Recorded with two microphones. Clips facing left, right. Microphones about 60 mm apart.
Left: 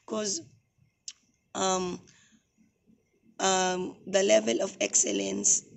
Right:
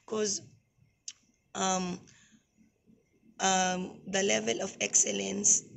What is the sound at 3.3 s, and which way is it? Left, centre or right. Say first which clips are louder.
Speech: left 2 dB; centre.